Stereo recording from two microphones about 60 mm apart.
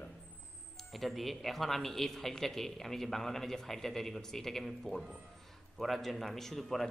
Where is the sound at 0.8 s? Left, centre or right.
Centre.